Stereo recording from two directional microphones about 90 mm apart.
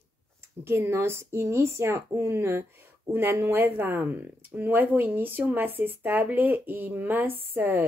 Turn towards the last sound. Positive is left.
turn(degrees=-20)  # may be behind; listen again after turning